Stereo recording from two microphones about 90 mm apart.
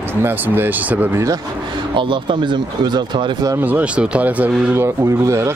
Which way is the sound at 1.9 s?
70° right (ahead or behind).